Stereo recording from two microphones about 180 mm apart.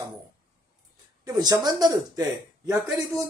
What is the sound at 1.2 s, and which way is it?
Speech, 20° right (ahead or behind).